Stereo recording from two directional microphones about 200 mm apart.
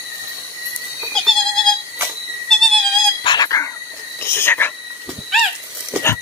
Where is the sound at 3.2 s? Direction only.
20° left (ahead or behind).